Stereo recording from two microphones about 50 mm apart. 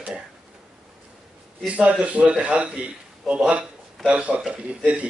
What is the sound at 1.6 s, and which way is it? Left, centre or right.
Speech, right.